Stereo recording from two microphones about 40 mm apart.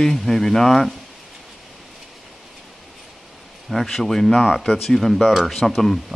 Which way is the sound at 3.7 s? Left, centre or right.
Centre.